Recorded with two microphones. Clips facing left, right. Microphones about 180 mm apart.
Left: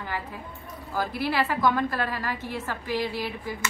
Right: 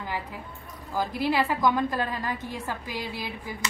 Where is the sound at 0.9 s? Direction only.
15° right (ahead or behind).